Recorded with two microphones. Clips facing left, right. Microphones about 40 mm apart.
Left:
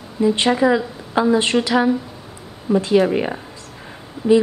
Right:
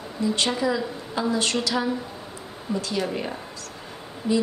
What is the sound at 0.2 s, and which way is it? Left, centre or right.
A woman's voice, left.